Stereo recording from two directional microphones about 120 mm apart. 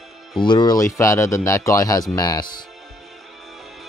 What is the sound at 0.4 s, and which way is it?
Speech, 40° left (ahead or behind).